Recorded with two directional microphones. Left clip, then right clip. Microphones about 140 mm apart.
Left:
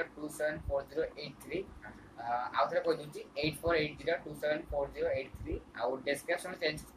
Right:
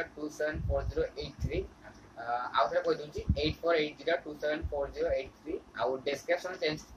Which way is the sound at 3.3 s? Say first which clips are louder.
Right 2 dB; 15° right (ahead or behind).